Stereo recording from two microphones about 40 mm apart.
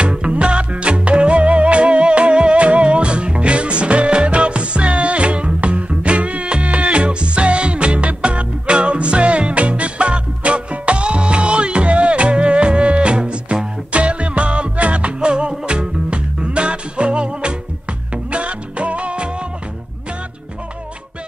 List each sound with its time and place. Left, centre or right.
0.0 s music: right